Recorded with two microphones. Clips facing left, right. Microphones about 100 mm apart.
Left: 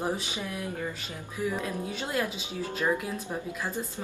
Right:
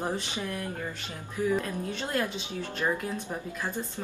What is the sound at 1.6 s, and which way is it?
Speech, 10° left (ahead or behind).